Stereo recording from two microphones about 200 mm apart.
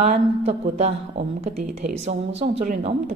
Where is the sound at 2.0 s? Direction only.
35° right (ahead or behind).